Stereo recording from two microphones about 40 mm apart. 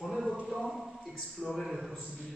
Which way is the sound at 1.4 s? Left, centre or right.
Centre.